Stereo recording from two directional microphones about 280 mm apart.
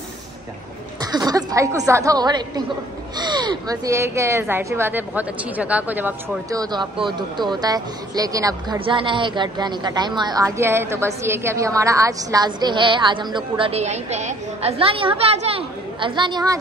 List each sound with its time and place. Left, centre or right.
1.1 s speech: centre